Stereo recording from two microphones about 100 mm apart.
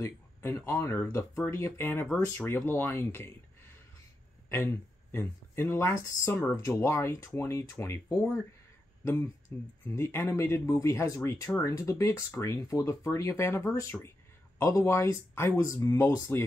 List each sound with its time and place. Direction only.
0.0 s speech: 30° left (ahead or behind)
4.5 s speech: 25° left (ahead or behind)